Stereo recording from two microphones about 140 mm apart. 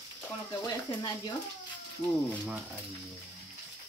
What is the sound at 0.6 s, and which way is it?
Speech, 25° left (ahead or behind).